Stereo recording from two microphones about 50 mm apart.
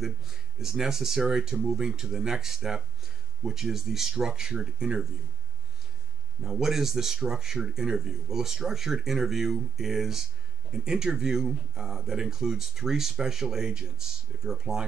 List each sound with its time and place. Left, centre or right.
0.6 s speech: centre
6.4 s speech: centre